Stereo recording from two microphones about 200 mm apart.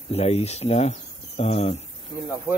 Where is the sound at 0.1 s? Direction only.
30° left (ahead or behind).